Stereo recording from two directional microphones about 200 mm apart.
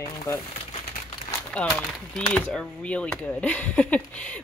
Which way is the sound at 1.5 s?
5° left (ahead or behind).